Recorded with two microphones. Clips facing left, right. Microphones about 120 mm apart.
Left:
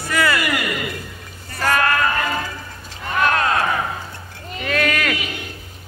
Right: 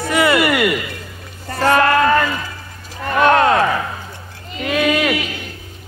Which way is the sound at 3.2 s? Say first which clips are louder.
Right 6 dB; 30° right (ahead or behind).